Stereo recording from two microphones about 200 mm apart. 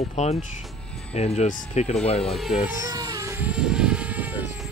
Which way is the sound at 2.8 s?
20° right (ahead or behind).